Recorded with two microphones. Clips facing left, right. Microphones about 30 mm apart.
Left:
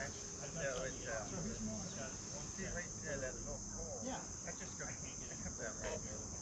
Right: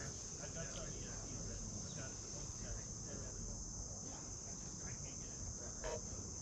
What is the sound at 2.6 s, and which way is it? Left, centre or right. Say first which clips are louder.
Cricket: left 6 dB; left.